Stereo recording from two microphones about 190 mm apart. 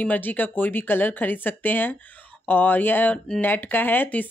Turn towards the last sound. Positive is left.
turn(degrees=10)  # may be behind; listen again after turning